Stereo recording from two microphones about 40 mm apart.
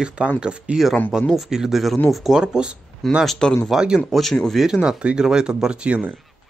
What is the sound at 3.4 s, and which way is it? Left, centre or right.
Speech, centre.